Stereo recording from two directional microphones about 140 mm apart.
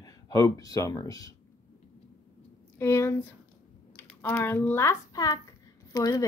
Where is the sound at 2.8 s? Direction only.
20° left (ahead or behind).